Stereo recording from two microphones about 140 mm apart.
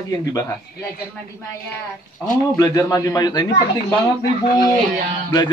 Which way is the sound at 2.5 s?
25° left (ahead or behind).